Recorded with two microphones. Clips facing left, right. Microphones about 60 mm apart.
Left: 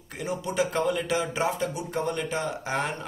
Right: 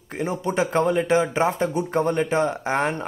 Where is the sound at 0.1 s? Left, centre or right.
Right.